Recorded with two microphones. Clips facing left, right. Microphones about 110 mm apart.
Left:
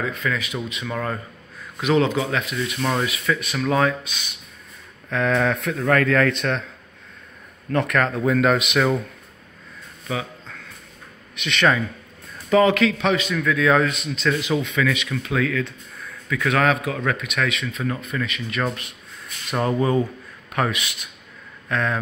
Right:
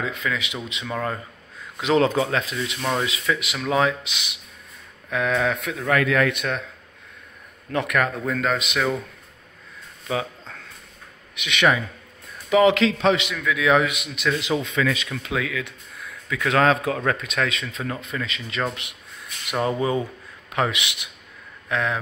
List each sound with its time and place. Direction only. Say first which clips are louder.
0.0 s speech: left 2 dB; 20° right (ahead or behind)
0.9 s speech: even; 15° right (ahead or behind)
2.0 s speech: right 2 dB; 35° right (ahead or behind)
2.5 s speech: left 2 dB; 20° right (ahead or behind)
2.8 s speech: left 1 dB; 5° right (ahead or behind)
7.7 s speech: left 2 dB; 10° right (ahead or behind)
8.2 s speech: left 5 dB; 5° left (ahead or behind)
11.3 s speech: left 1 dB; 10° right (ahead or behind)
13.3 s speech: left 1 dB; 10° right (ahead or behind)
14.4 s speech: left 1 dB; 25° right (ahead or behind)
19.6 s speech: left 3 dB; 15° right (ahead or behind)